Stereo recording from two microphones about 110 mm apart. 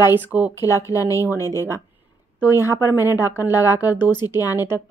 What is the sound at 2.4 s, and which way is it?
A woman's voice, 20° right (ahead or behind).